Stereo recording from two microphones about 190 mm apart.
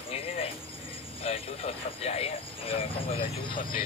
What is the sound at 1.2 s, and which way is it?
Speech, 30° left (ahead or behind).